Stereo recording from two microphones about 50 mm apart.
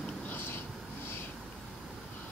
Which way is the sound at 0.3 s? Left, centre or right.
Left.